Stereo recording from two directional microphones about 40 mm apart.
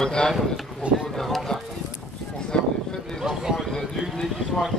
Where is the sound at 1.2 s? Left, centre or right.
Centre.